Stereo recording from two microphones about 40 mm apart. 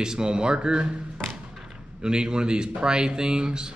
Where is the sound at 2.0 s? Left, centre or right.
Right.